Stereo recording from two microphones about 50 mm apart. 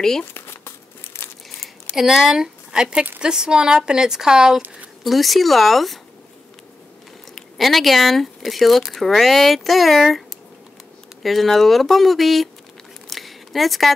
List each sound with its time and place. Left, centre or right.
0.2 s crumpling: left
2.0 s speech: centre
5.0 s speech: centre
7.5 s speech: centre
11.2 s speech: centre
13.1 s a sound: centre